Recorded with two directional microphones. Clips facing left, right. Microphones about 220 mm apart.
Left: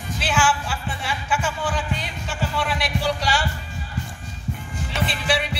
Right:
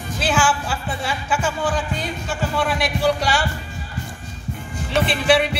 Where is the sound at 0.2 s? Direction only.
45° right (ahead or behind).